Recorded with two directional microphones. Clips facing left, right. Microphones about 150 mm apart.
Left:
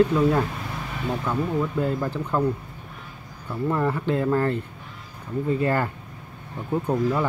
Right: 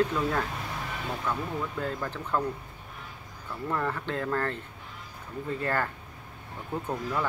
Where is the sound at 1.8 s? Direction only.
15° left (ahead or behind).